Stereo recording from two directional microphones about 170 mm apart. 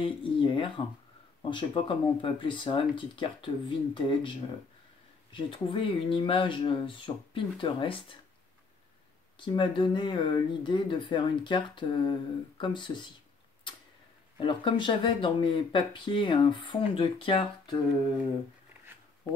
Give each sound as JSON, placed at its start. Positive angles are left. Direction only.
{"t": 0.0, "sound": "speech", "side_deg": 30}
{"t": 9.4, "sound": "speech", "side_deg": 30}
{"t": 13.7, "sound": "tick-tock", "side_deg": 30}
{"t": 14.4, "sound": "speech", "side_deg": 30}